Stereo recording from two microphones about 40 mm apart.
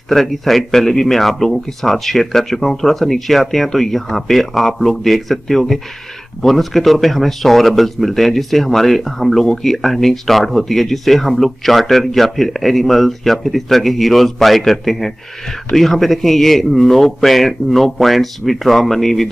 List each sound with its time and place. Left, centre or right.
0.1 s speech: centre